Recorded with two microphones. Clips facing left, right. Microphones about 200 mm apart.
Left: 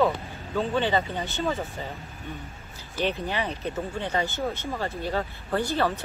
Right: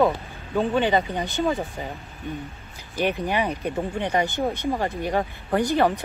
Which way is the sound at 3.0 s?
15° right (ahead or behind).